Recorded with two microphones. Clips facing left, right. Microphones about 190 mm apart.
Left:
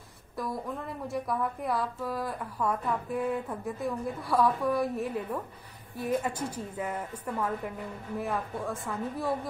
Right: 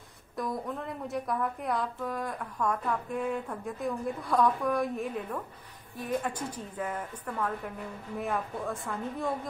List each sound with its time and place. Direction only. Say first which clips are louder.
0.4 s a woman's voice: right 1 dB; centre (ahead or behind)